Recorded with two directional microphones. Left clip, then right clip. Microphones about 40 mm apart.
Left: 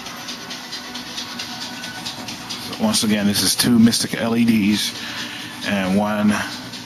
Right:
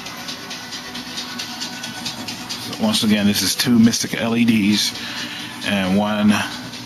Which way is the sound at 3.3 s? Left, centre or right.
Left.